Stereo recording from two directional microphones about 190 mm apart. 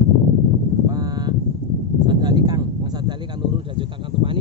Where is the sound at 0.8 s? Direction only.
20° right (ahead or behind).